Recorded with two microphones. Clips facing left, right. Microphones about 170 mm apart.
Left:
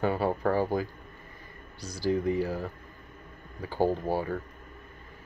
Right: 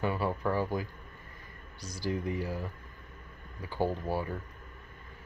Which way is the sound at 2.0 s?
30° left (ahead or behind).